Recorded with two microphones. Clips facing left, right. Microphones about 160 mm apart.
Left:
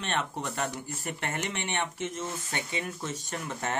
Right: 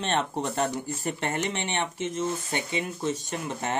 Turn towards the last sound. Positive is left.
turn(degrees=-20)  # may be behind; listen again after turning